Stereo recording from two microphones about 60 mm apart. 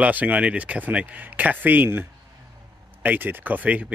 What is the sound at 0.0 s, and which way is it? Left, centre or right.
Speech, right.